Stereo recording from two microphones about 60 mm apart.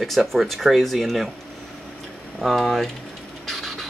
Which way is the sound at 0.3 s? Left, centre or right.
Centre.